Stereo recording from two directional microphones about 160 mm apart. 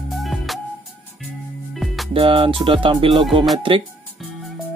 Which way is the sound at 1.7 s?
Centre (ahead or behind).